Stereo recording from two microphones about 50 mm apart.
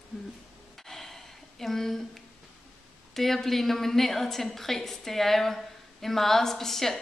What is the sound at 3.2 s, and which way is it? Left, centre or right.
A woman's voice, centre.